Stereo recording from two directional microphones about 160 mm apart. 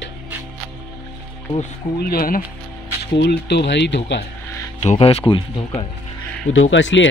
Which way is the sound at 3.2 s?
90° left.